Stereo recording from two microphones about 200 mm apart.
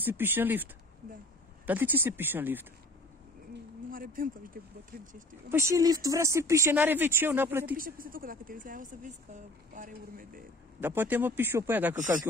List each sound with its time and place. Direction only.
0.0 s speech: 10° right (ahead or behind)
1.7 s speech: 10° right (ahead or behind)
3.9 s speech: 45° right (ahead or behind)
5.5 s speech: 15° right (ahead or behind)
7.7 s speech: 45° right (ahead or behind)
10.8 s speech: 10° right (ahead or behind)
11.9 s speech: 40° right (ahead or behind)